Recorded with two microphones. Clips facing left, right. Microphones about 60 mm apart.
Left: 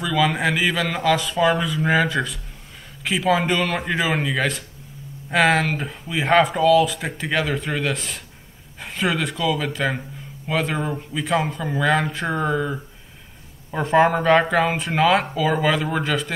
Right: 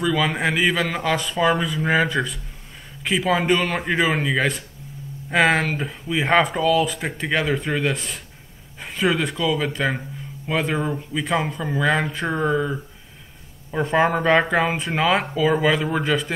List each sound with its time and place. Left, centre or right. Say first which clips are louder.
0.0 s a man's voice: left 1 dB; centre
3.4 s a man's voice: right 2 dB; right
3.7 s speech: right 1 dB; centre
5.8 s speech: right 2 dB; centre
6.9 s speech: right 1 dB; centre
9.0 s speech: right 1 dB; centre
9.8 s speech: even; centre